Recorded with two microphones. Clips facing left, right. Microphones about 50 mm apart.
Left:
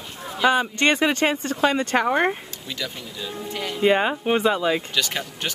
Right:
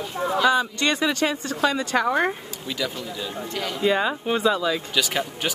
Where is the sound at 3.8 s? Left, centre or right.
Left.